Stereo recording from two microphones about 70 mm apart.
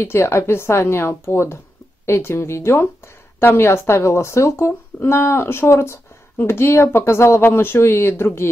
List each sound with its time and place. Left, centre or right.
0.0 s speech: left